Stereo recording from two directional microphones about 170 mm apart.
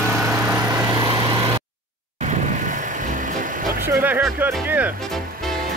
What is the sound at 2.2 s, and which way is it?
Vehicle, 50° right (ahead or behind).